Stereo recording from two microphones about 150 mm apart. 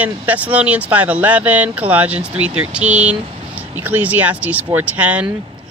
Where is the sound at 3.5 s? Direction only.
10° right (ahead or behind).